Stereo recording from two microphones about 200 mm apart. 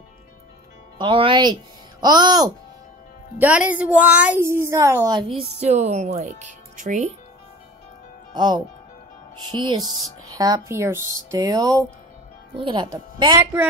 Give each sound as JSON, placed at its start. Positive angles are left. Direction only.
{"t": 0.9, "sound": "speech", "side_deg": -25}
{"t": 3.3, "sound": "a woman's voice", "side_deg": -5}
{"t": 8.3, "sound": "a woman's voice", "side_deg": -20}